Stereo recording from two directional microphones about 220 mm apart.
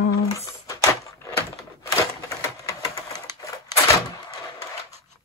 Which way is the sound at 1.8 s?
15° left (ahead or behind).